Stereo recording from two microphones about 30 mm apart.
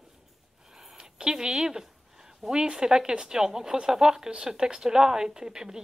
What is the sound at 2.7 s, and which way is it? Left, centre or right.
A woman's voice, right.